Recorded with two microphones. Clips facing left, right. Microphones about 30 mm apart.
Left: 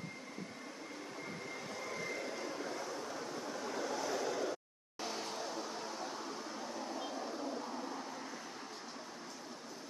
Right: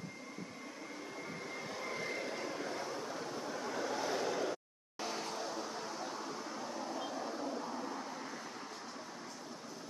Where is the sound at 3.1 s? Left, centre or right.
Centre.